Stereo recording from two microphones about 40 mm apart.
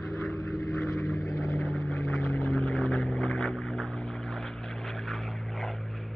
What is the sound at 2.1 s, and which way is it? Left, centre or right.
Vehicle, left.